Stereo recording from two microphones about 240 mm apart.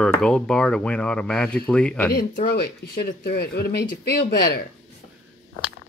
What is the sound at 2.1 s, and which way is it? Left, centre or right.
Speech, left.